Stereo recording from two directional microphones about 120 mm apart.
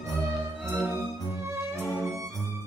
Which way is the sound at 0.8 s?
25° right (ahead or behind).